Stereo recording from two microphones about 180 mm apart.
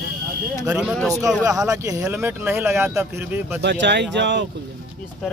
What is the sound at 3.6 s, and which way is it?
Speech, 75° right (ahead or behind).